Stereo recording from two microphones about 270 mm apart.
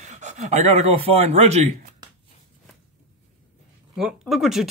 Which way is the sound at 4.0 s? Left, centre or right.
Centre.